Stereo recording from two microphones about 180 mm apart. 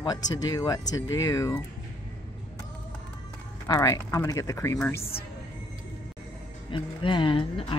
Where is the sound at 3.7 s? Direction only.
20° left (ahead or behind).